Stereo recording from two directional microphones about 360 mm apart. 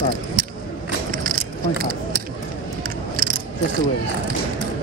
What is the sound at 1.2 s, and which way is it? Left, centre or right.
Keys jangling, right.